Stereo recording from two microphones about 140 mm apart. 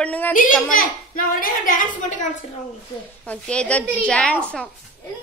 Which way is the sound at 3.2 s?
10° left (ahead or behind).